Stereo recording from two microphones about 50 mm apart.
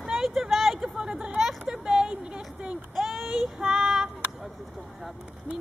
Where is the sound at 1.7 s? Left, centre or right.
Centre.